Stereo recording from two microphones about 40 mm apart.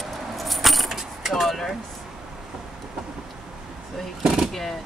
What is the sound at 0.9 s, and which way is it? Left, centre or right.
Vehicle, centre.